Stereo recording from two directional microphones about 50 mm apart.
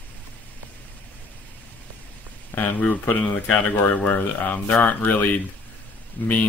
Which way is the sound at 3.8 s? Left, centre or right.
Left.